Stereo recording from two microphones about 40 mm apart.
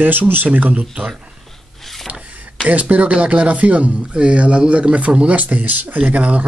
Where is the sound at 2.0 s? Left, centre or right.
Right.